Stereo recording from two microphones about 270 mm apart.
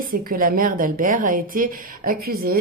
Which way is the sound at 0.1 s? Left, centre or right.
Right.